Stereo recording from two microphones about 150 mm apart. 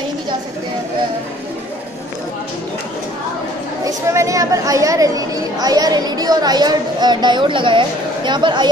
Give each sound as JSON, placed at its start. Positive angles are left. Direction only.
{"t": 3.8, "sound": "a woman's voice", "side_deg": -20}